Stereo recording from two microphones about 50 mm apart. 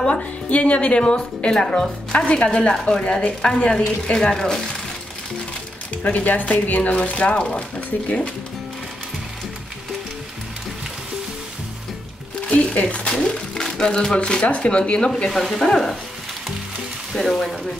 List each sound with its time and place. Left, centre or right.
0.0 s speech: left; by 4.6 s centre
6.0 s a woman's voice: left
12.4 s speech: left; by 16.0 s centre
17.1 s speech: centre